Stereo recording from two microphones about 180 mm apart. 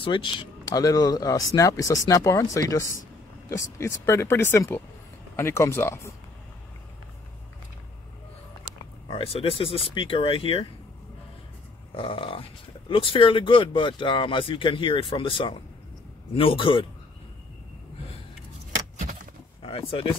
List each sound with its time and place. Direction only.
0.0 s speech: 25° left (ahead or behind)
9.0 s speech: 30° left (ahead or behind)
11.9 s speech: 30° left (ahead or behind)
19.6 s speech: 30° left (ahead or behind)